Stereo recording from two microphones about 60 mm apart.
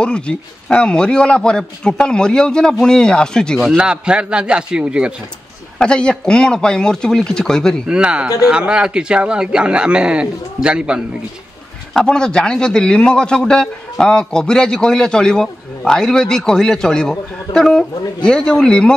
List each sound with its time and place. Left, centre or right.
0.0 s a man's voice: centre
3.7 s speech: centre
5.8 s a man's voice: centre
7.9 s speech: centre
11.9 s a man's voice: centre